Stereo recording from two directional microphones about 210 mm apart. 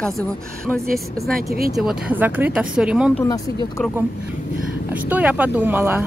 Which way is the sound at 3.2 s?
15° left (ahead or behind).